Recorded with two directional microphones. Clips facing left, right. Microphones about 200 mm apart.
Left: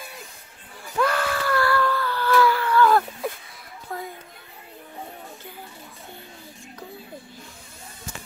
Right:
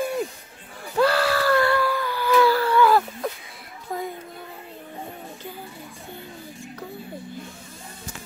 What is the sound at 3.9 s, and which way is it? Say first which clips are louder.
Chatter: right 3 dB; 15° right (ahead or behind).